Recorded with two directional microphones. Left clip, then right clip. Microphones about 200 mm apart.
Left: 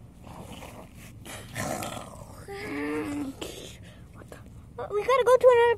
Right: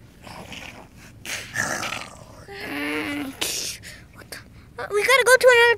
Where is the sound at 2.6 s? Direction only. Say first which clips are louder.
Right 5 dB; 20° right (ahead or behind).